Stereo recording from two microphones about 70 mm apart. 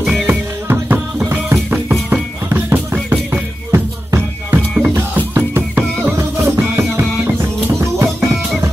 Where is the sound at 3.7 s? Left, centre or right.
Right.